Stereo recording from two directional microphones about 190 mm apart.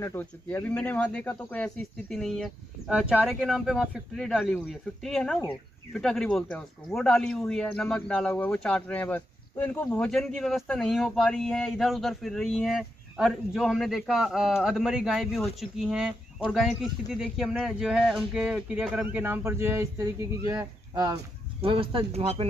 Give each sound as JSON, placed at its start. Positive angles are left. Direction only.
{"t": 0.0, "sound": "a man's voice", "side_deg": 10}
{"t": 21.5, "sound": "speech", "side_deg": -30}